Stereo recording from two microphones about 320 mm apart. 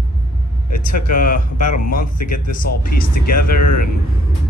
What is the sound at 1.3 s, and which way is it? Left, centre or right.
Speech, left.